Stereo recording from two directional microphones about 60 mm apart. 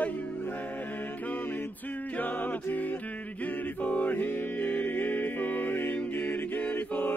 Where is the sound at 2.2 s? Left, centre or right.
Left.